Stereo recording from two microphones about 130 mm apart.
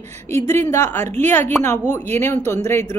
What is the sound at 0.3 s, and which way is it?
A woman's voice, 20° left (ahead or behind).